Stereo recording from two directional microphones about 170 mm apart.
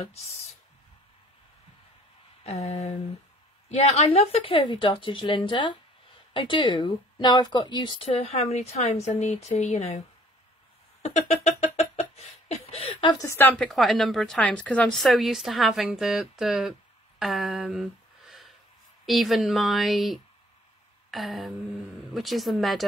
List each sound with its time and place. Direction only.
0.0 s a woman's voice: 40° left (ahead or behind)
2.4 s a woman's voice: 35° left (ahead or behind)
11.0 s a sound: 40° left (ahead or behind)
13.1 s speech: 15° left (ahead or behind)
13.6 s speech: centre (ahead or behind)
19.0 s speech: centre (ahead or behind)